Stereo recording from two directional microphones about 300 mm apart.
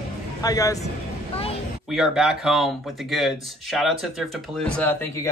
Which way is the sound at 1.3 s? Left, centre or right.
Centre.